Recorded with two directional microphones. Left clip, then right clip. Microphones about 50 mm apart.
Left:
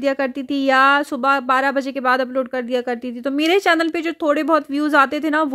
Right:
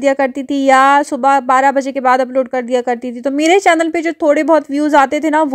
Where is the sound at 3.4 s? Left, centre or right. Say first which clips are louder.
Right 6 dB; right.